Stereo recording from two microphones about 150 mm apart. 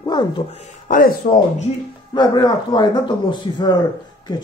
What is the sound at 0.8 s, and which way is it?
Speech, 65° left (ahead or behind).